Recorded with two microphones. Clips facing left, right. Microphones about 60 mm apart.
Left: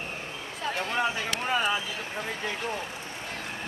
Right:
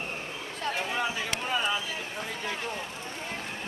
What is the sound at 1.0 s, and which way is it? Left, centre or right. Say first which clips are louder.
Speech: left 2 dB; centre.